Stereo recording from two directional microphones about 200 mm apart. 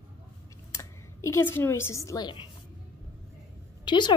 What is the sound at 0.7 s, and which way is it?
A woman's voice, 15° left (ahead or behind).